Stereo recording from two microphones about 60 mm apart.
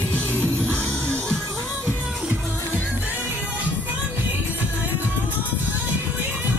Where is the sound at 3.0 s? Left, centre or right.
Right.